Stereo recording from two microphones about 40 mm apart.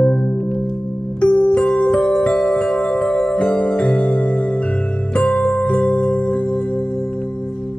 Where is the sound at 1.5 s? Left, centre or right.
Left.